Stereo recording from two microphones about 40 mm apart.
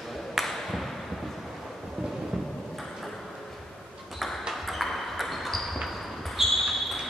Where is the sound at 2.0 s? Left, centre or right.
Centre.